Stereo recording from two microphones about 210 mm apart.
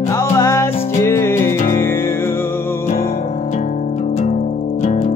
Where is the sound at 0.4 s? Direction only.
15° left (ahead or behind).